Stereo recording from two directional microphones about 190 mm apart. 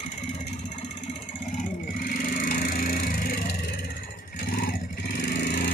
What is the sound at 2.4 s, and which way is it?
Splinter, 45° left (ahead or behind).